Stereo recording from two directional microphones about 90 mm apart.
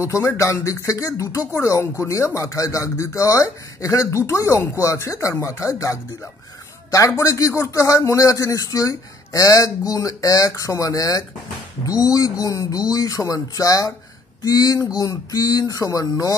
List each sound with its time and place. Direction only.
0.0 s speech: 30° left (ahead or behind)
7.1 s speech: 35° left (ahead or behind)